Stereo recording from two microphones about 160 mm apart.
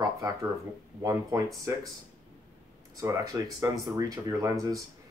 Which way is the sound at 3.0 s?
20° right (ahead or behind).